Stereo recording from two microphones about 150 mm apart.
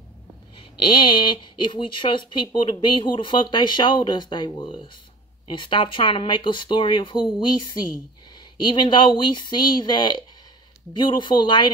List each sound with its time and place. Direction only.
0.6 s speech: 35° left (ahead or behind)